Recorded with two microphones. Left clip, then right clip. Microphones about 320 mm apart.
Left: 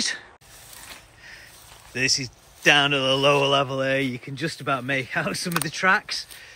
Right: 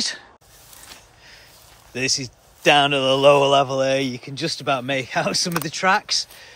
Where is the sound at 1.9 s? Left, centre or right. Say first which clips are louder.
Even; centre.